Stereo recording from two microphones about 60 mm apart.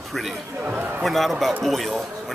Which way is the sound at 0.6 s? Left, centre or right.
Right.